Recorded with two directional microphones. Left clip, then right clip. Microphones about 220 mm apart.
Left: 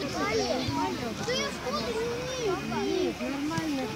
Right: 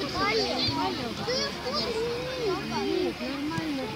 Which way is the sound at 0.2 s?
30° right (ahead or behind).